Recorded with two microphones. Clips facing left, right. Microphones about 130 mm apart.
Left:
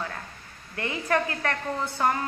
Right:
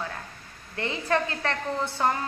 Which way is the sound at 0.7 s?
25° right (ahead or behind).